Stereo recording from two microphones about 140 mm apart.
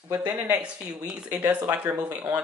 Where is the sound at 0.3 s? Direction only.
10° right (ahead or behind).